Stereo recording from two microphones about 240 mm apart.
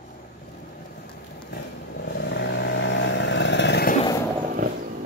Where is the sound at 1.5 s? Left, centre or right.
Left.